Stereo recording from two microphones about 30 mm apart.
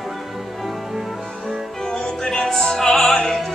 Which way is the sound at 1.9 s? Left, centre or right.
Left.